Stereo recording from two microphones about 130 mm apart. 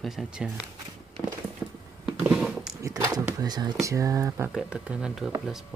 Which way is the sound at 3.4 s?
30° right (ahead or behind).